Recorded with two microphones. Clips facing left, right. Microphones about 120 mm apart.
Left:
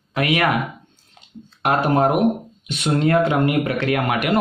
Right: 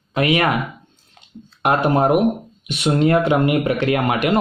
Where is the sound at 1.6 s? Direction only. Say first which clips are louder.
Right 1 dB; 20° right (ahead or behind).